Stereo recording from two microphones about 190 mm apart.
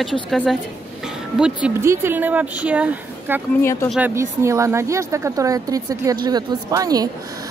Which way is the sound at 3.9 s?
10° right (ahead or behind).